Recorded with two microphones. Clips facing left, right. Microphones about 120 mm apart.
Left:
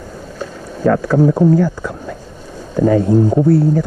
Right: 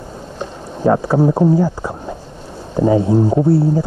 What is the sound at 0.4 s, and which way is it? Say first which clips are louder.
Speech: left 1 dB; 20° right (ahead or behind).